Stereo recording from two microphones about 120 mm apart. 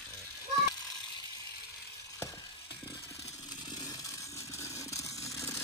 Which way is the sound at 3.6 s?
35° left (ahead or behind).